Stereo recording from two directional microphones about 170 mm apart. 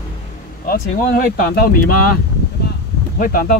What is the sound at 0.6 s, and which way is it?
Speech, 55° left (ahead or behind).